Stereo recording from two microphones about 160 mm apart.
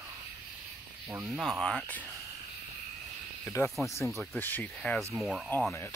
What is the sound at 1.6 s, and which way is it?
Speech, centre (ahead or behind).